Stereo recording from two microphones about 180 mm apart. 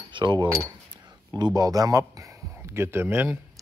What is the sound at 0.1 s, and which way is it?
Speech, 25° right (ahead or behind).